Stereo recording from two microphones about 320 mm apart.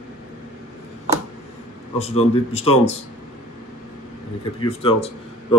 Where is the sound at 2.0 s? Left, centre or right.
Centre.